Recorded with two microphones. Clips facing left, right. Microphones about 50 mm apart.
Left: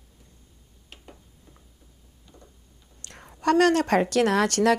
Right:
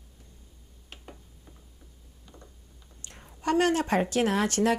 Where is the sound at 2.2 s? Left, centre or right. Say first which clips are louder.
Even; centre.